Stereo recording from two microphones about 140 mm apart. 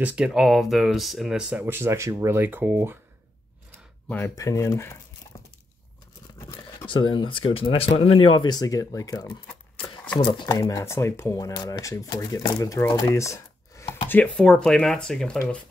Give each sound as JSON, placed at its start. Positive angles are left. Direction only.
{"t": 0.0, "sound": "speech", "side_deg": -10}
{"t": 4.4, "sound": "speech", "side_deg": 20}
{"t": 6.9, "sound": "speech", "side_deg": 35}
{"t": 10.5, "sound": "speech", "side_deg": 25}
{"t": 12.9, "sound": "a sound", "side_deg": 20}
{"t": 14.0, "sound": "speech", "side_deg": 10}